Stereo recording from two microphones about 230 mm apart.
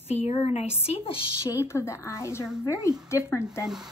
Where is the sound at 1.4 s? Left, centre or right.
Centre.